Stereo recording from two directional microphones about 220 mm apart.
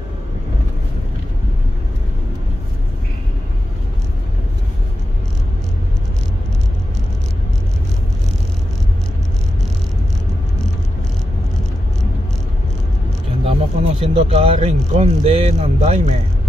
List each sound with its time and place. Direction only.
13.5 s speech: 25° right (ahead or behind)